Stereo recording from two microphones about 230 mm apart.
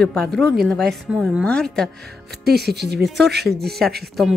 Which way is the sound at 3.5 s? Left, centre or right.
Right.